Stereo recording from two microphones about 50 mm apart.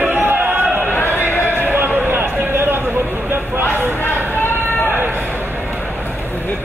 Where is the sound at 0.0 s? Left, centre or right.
Right.